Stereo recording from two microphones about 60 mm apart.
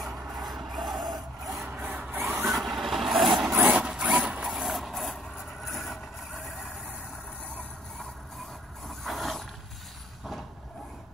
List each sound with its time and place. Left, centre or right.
0.0 s a sound: centre
1.7 s sawing: right
2.1 s vehicle: right
2.4 s vehicle: centre
3.7 s a sound: centre
4.5 s vehicle: centre
8.8 s pulleys: centre